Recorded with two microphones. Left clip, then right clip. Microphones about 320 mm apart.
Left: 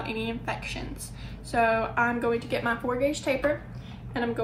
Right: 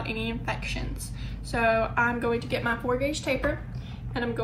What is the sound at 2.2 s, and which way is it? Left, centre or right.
A woman's voice, left.